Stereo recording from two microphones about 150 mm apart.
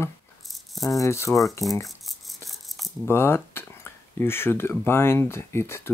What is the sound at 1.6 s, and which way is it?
Speech, centre (ahead or behind).